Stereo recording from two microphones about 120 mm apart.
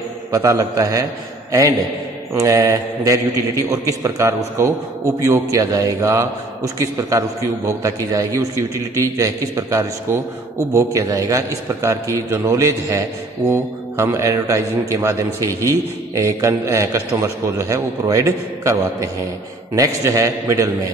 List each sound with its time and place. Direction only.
0.3 s a man's voice: 25° right (ahead or behind)
2.3 s a man's voice: 25° right (ahead or behind)